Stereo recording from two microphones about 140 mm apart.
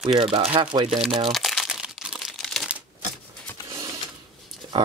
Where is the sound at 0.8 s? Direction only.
5° right (ahead or behind).